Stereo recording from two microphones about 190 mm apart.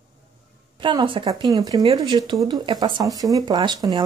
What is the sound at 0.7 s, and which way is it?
Speech, 25° right (ahead or behind).